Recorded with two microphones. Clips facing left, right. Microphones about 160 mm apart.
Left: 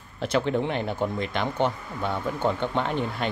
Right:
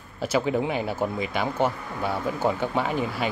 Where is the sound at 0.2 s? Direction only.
5° right (ahead or behind).